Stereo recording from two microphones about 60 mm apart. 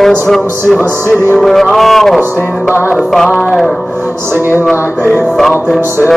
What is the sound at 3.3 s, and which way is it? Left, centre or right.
Music, left.